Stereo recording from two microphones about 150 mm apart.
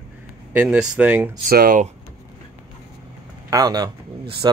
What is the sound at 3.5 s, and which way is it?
Speech, 25° right (ahead or behind).